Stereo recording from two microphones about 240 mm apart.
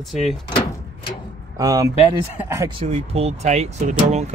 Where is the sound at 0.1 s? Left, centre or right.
Centre.